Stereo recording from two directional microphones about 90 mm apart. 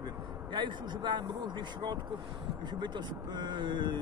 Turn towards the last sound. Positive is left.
turn(degrees=-60)  # may be behind; listen again after turning